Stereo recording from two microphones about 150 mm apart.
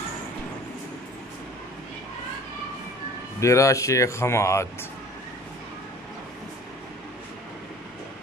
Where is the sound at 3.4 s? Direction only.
20° left (ahead or behind).